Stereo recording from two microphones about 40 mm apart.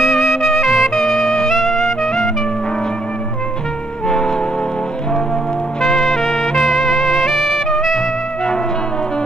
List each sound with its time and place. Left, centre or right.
0.0 s music: centre
0.9 s music: centre
1.5 s music: centre
4.1 s music: centre
5.8 s music: centre